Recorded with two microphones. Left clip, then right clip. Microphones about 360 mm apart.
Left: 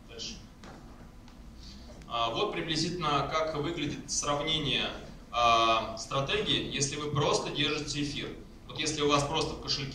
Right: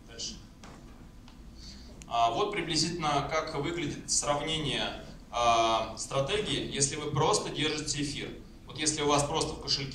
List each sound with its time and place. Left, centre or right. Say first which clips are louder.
2.0 s a man's voice: right 3 dB; centre